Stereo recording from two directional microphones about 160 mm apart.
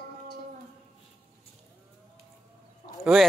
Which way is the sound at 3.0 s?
5° right (ahead or behind).